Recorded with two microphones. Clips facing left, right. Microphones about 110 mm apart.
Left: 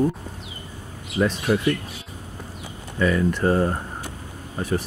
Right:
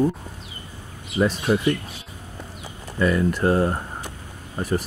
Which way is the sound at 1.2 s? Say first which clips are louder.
Right 1 dB; 15° right (ahead or behind).